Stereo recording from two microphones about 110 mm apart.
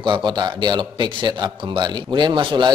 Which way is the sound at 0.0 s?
45° right (ahead or behind).